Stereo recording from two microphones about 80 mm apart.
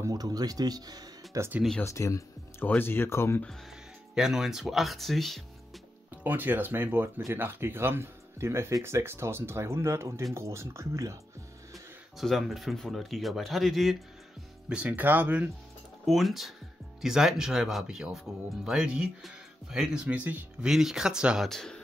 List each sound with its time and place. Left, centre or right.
0.1 s speech: right
1.8 s speech: left
2.8 s speech: left
4.1 s speech: centre
6.2 s speech: right
11.7 s speech: centre
14.7 s speech: centre
16.1 s speech: centre
20.6 s speech: centre
21.5 s a man's voice: centre